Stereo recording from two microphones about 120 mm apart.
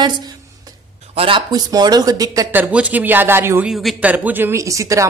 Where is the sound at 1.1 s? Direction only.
50° right (ahead or behind).